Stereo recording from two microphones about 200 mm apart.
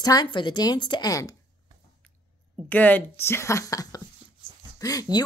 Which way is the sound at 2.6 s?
10° left (ahead or behind).